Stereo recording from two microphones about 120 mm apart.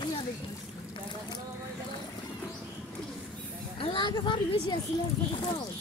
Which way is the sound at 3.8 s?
45° left (ahead or behind).